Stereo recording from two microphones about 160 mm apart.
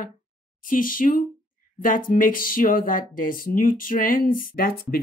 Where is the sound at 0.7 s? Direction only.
60° left (ahead or behind).